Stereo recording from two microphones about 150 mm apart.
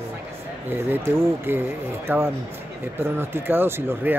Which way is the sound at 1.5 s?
15° right (ahead or behind).